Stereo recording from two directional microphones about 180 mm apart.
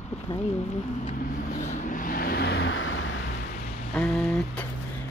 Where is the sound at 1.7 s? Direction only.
45° left (ahead or behind); by 3.2 s 90° left.